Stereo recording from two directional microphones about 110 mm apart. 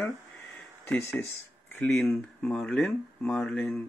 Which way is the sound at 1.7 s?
10° left (ahead or behind).